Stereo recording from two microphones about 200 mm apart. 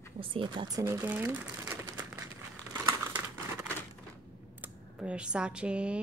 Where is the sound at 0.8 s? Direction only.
10° right (ahead or behind).